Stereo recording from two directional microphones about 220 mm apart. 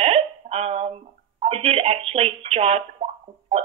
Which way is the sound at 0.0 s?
30° right (ahead or behind).